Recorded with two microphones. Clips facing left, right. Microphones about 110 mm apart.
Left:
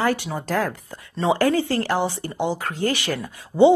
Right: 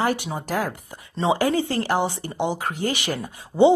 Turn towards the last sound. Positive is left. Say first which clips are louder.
# left 1 dB
turn(degrees=-20)  # may be behind; listen again after turning